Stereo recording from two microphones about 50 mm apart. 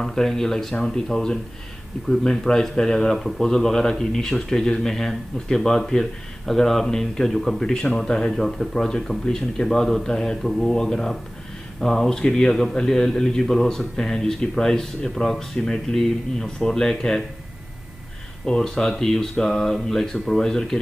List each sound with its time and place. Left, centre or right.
0.0 s a man's voice: centre
7.7 s a man's voice: centre
18.4 s a man's voice: centre